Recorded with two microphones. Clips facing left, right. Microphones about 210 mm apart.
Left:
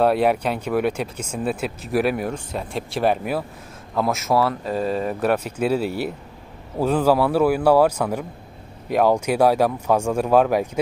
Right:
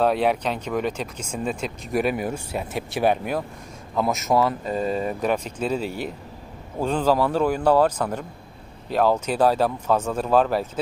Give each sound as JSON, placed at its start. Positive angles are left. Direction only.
{"t": 0.0, "sound": "speech", "side_deg": 10}
{"t": 4.3, "sound": "speech", "side_deg": -20}
{"t": 4.6, "sound": "speech", "side_deg": 5}